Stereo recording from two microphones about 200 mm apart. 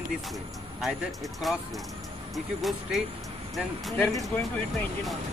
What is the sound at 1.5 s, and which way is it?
Speech, centre (ahead or behind).